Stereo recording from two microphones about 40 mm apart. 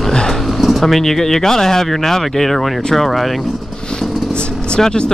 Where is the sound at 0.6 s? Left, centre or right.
Centre.